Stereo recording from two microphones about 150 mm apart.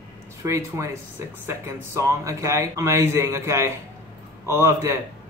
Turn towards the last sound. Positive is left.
turn(degrees=-20)  # may be behind; listen again after turning